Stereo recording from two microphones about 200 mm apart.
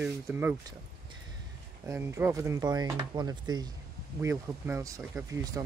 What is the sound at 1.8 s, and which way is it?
Speech, 10° right (ahead or behind).